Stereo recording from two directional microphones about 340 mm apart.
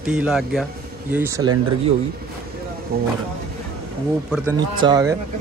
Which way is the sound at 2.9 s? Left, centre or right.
Right.